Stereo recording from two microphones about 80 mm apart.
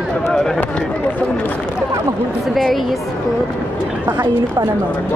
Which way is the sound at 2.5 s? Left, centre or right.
Centre.